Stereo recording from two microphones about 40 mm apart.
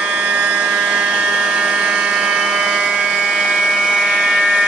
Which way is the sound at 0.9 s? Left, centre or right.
Centre.